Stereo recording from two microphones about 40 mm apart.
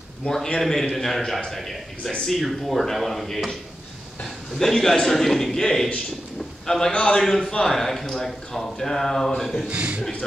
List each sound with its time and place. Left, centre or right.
0.3 s a man's voice: centre
6.9 s a man's voice: left
7.2 s speech: centre
9.7 s a man's voice: right